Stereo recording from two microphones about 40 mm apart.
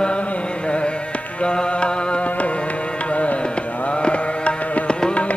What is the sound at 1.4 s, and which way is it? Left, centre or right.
Music, left.